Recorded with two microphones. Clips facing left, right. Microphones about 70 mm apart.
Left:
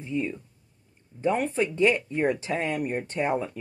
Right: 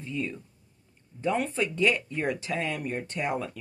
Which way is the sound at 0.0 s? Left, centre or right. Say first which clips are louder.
Left 4 dB; centre.